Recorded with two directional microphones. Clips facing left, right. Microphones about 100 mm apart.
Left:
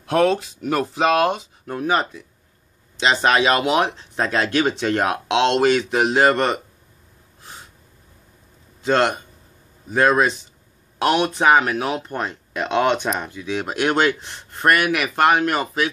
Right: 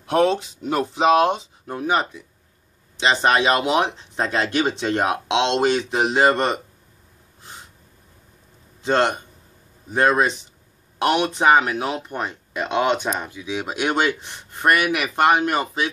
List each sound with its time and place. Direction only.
0.0 s speech: 20° right (ahead or behind)
3.2 s speech: 25° right (ahead or behind)
8.8 s speech: 20° right (ahead or behind)